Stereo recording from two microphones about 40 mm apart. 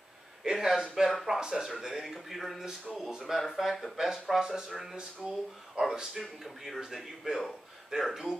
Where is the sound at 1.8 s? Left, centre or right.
Centre.